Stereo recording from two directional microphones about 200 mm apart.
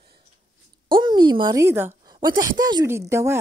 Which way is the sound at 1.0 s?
25° right (ahead or behind).